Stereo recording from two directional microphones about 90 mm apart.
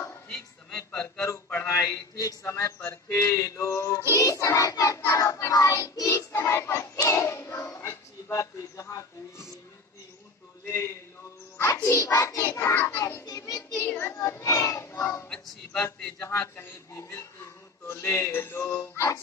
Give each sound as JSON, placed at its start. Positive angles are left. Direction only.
{"t": 0.7, "sound": "speech", "side_deg": 35}
{"t": 4.1, "sound": "child singing", "side_deg": 40}
{"t": 11.5, "sound": "music", "side_deg": 30}
{"t": 12.2, "sound": "child singing", "side_deg": 35}
{"t": 13.2, "sound": "child singing", "side_deg": 45}
{"t": 13.8, "sound": "child singing", "side_deg": 25}
{"t": 14.2, "sound": "speech", "side_deg": 35}
{"t": 15.2, "sound": "a man's voice", "side_deg": 10}
{"t": 16.3, "sound": "speech", "side_deg": 30}